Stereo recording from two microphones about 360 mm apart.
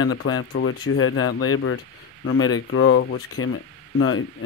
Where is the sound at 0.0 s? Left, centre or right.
Left.